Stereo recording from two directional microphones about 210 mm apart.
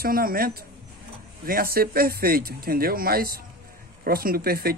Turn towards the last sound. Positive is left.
turn(degrees=-45)  # may be behind; listen again after turning